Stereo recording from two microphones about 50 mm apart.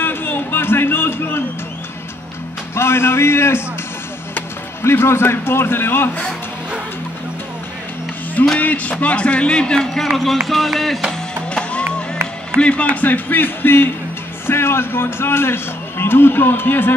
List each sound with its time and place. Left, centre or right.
0.0 s a sound: left
2.7 s a man's voice: left
4.8 s a man's voice: left
8.5 s speech: left; by 11.0 s centre
12.5 s a man's voice: left